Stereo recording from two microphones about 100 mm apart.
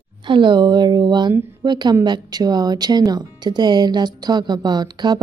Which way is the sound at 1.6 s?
45° right (ahead or behind).